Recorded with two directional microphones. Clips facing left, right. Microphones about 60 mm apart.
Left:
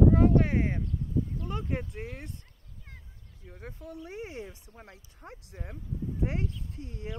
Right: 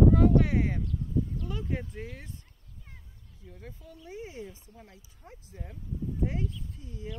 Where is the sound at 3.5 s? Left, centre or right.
Left.